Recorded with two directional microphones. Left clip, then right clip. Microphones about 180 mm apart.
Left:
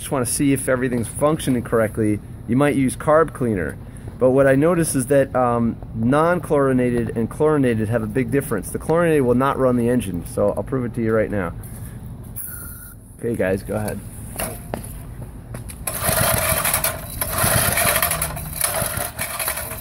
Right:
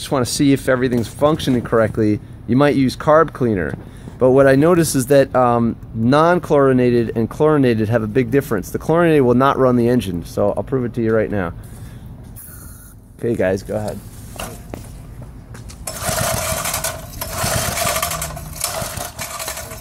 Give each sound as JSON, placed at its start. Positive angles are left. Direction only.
{"t": 0.0, "sound": "speech", "side_deg": -40}
{"t": 13.2, "sound": "speech", "side_deg": -35}
{"t": 15.8, "sound": "a sound", "side_deg": 5}